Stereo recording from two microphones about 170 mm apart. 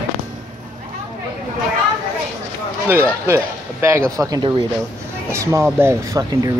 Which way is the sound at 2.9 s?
15° right (ahead or behind).